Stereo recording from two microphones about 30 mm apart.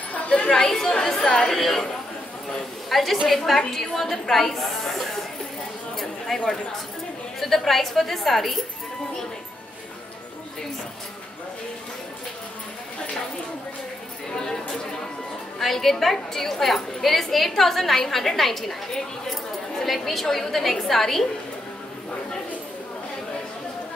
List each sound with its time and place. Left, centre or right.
0.5 s a woman's voice: centre
2.9 s a woman's voice: centre
5.9 s a sound: centre
7.3 s a woman's voice: centre
14.3 s chatter: left
15.6 s a woman's voice: centre
19.8 s a woman's voice: centre